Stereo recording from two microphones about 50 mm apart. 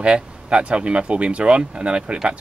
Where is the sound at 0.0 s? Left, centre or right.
Right.